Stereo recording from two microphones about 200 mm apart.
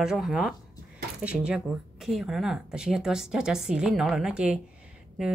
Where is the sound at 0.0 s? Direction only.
5° right (ahead or behind).